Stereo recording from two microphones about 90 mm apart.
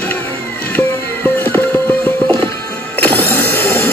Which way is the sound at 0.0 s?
20° left (ahead or behind).